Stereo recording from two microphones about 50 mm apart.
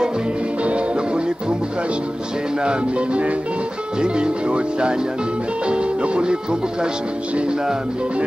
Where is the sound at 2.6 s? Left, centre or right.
Right.